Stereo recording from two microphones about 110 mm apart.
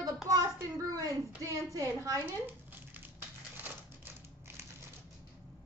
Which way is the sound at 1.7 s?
30° right (ahead or behind).